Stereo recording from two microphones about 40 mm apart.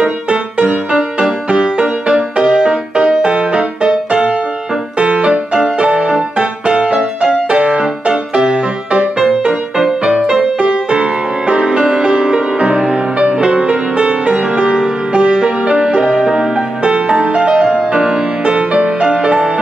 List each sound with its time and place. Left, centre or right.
0.6 s music: right
16.0 s music: centre